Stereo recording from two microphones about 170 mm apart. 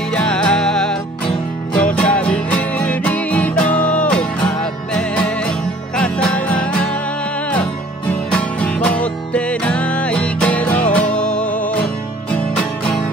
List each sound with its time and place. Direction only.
0.1 s music: 5° left (ahead or behind)
1.2 s music: 30° left (ahead or behind)
1.8 s music: 5° left (ahead or behind)
8.1 s music: 10° left (ahead or behind)
12.5 s music: 5° left (ahead or behind)